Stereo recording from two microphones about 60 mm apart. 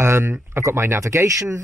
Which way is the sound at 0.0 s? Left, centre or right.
Right.